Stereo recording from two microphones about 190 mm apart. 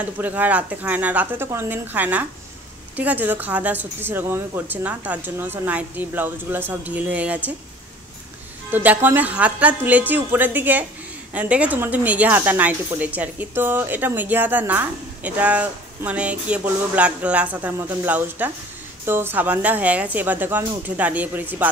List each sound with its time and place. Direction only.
0.2 s speech: 10° right (ahead or behind)
8.7 s speech: 10° right (ahead or behind)